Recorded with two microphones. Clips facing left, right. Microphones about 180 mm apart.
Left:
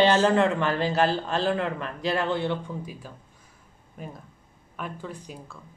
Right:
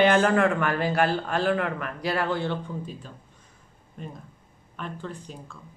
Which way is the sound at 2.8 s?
10° left (ahead or behind).